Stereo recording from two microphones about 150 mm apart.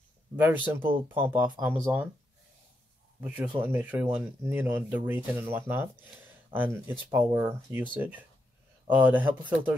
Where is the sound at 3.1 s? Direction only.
10° right (ahead or behind).